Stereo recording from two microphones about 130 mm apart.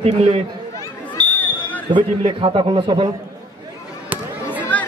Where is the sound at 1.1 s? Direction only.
10° left (ahead or behind).